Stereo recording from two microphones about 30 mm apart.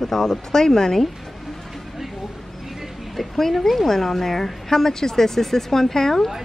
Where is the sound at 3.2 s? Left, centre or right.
Centre.